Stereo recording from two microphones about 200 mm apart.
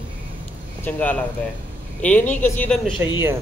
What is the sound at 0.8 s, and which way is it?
Speech, 10° left (ahead or behind).